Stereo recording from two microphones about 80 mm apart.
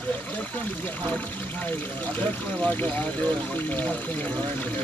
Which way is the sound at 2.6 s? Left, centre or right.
Centre.